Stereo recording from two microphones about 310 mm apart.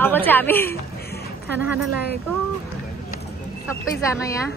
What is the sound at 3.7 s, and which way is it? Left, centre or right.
Speech, centre.